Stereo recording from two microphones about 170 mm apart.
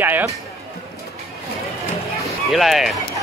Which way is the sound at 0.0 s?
10° right (ahead or behind).